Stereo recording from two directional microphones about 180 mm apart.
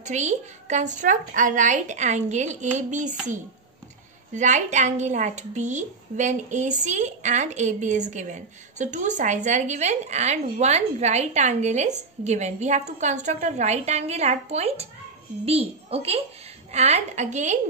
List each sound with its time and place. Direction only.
0.0 s a woman's voice: 40° right (ahead or behind)
4.4 s a woman's voice: 40° right (ahead or behind)